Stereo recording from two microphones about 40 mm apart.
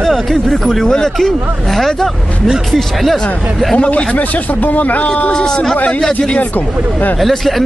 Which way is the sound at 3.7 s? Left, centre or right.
Left.